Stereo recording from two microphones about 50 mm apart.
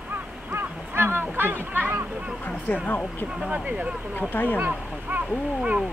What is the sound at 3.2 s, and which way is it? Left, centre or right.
Speech, centre.